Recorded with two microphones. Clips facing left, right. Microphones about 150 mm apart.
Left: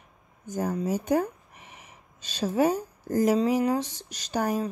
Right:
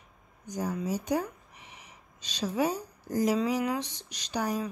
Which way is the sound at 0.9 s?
50° left (ahead or behind).